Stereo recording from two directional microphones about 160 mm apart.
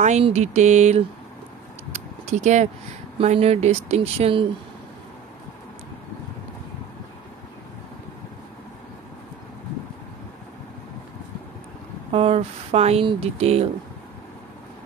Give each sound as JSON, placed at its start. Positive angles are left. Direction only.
{"t": 0.0, "sound": "a sound", "side_deg": -45}
{"t": 3.2, "sound": "speech", "side_deg": -40}
{"t": 12.1, "sound": "speech", "side_deg": -35}